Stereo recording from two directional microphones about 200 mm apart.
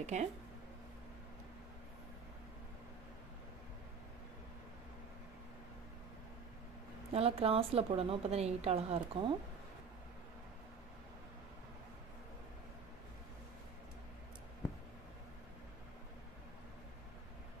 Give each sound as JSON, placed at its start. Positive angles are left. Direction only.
{"t": 0.0, "sound": "speech", "side_deg": -35}
{"t": 7.1, "sound": "a woman's voice", "side_deg": -30}